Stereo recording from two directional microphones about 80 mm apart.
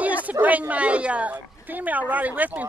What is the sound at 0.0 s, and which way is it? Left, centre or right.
Speech, centre.